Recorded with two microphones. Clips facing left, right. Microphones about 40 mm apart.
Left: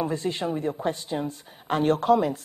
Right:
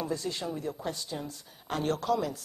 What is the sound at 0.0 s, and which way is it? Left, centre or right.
Speech, left.